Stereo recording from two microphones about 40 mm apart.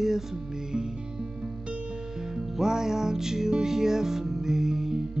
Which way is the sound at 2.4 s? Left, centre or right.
Centre.